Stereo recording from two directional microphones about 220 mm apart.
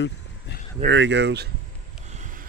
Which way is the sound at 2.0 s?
35° right (ahead or behind).